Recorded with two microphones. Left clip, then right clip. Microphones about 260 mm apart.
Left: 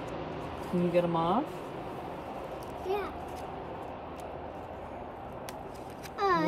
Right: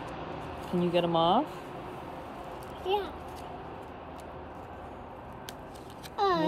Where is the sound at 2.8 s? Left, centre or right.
Centre.